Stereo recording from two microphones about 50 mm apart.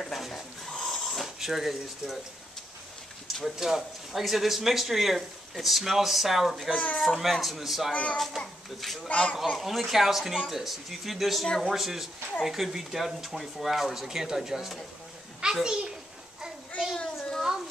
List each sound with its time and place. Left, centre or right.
0.0 s a sound: centre
3.4 s speech: centre
6.7 s child singing: left
7.0 s speech: centre
7.9 s child singing: left
8.8 s speech: centre
9.1 s child singing: left
9.6 s speech: centre
11.4 s speech: centre
11.7 s a child's voice: centre
16.9 s a sound: centre